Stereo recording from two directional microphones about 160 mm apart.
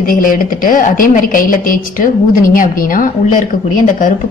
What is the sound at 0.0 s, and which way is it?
A woman's voice, 60° left (ahead or behind).